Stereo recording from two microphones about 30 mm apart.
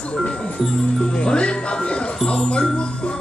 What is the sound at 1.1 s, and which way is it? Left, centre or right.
Speech, left.